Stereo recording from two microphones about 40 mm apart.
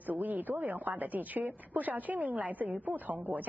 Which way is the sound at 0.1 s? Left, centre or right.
Right.